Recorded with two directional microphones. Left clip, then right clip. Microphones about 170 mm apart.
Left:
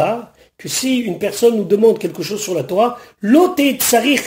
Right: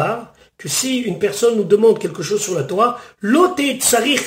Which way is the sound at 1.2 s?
35° left (ahead or behind).